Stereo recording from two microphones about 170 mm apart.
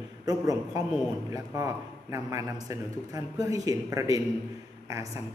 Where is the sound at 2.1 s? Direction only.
20° right (ahead or behind).